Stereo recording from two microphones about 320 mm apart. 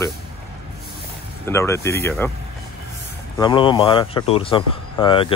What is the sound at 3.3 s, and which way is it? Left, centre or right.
Speech, centre.